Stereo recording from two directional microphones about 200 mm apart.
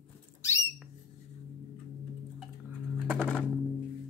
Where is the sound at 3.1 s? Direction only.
5° left (ahead or behind).